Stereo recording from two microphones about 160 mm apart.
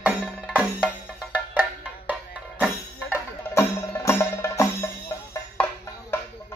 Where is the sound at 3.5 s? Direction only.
15° left (ahead or behind).